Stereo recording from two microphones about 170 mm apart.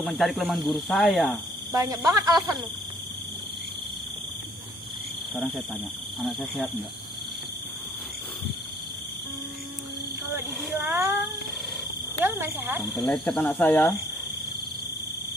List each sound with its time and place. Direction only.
0.0 s speech: centre (ahead or behind)
1.7 s speech: 20° right (ahead or behind)
6.2 s speech: centre (ahead or behind)
10.8 s speech: 15° right (ahead or behind)
13.0 s speech: 5° left (ahead or behind)